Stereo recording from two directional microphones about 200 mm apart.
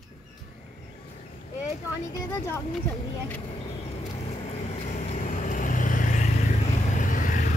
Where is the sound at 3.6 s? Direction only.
35° left (ahead or behind).